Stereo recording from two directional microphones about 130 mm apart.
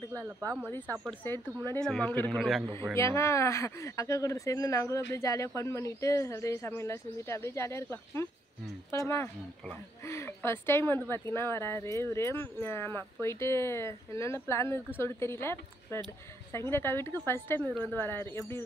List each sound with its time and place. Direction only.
0.1 s speech: 25° right (ahead or behind)
0.7 s speech: 15° left (ahead or behind)
2.3 s a man's voice: centre (ahead or behind)
3.0 s speech: 20° left (ahead or behind)